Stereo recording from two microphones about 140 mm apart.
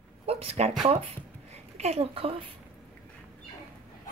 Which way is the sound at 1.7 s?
50° right (ahead or behind).